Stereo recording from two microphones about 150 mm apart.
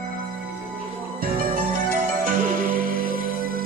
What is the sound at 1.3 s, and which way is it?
Music, 70° right (ahead or behind).